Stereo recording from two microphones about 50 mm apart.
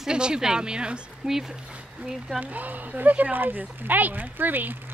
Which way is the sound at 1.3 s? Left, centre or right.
Centre.